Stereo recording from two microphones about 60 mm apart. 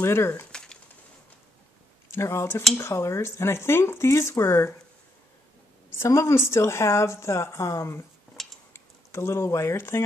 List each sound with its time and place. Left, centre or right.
0.0 s a woman's voice: left
0.5 s a sound: centre
2.1 s a woman's voice: left
5.9 s a woman's voice: left
8.4 s a sound: centre
8.7 s speech: left